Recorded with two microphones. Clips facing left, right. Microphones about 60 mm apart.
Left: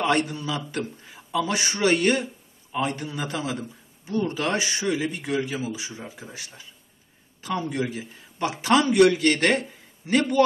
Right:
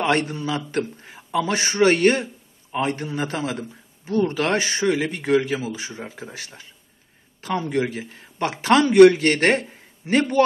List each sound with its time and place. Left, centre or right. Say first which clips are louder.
0.0 s a man's voice: right 2 dB; right
4.0 s a man's voice: right 4 dB; right